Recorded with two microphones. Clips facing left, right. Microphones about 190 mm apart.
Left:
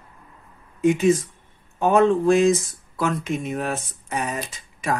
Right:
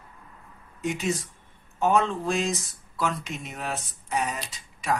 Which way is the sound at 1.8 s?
55° left (ahead or behind).